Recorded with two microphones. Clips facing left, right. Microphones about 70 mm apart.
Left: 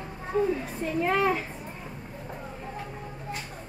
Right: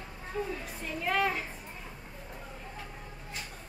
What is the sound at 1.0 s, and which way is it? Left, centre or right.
Speech, left.